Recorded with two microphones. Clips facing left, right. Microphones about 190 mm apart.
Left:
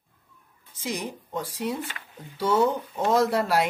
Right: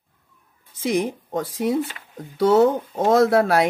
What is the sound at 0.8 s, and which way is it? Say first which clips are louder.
Speech: right 10 dB; 55° right (ahead or behind).